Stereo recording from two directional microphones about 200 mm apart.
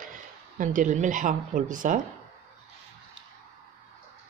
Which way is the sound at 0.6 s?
40° right (ahead or behind).